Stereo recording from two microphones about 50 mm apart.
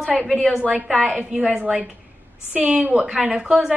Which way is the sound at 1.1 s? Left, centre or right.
Right.